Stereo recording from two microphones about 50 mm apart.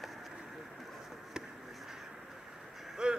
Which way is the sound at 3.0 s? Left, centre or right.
Centre.